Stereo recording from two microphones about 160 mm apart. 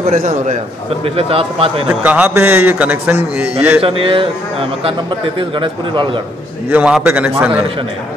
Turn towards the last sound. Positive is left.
turn(degrees=-10)  # may be behind; listen again after turning